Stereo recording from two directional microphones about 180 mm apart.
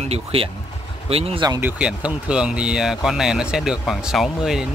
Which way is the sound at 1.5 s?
10° right (ahead or behind).